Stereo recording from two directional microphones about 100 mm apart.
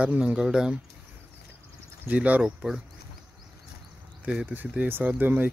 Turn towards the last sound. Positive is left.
turn(degrees=-20)  # may be behind; listen again after turning